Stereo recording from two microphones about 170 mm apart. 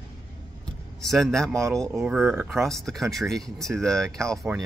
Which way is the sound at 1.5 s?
15° right (ahead or behind).